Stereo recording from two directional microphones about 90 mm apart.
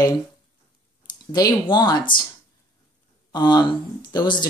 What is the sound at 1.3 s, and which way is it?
Speech, 50° left (ahead or behind).